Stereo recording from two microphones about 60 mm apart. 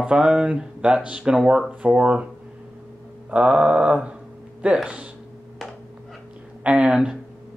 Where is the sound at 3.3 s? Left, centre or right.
Right.